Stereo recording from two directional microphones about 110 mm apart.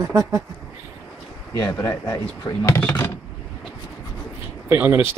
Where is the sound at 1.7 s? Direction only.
30° left (ahead or behind).